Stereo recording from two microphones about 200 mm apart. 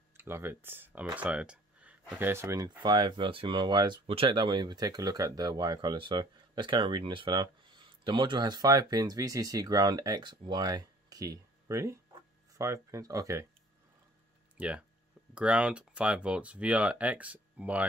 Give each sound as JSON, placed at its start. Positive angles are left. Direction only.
{"t": 0.2, "sound": "speech", "side_deg": -10}
{"t": 14.6, "sound": "speech", "side_deg": -5}